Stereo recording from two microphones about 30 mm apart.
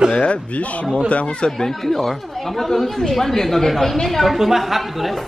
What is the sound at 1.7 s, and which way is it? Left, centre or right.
A man's voice, centre.